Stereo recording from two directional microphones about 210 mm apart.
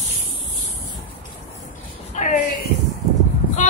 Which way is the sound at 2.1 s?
40° left (ahead or behind).